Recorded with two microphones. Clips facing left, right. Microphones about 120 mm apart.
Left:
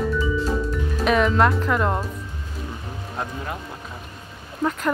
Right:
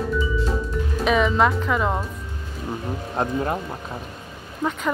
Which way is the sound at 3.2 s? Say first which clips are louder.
Right 7 dB; 35° right (ahead or behind).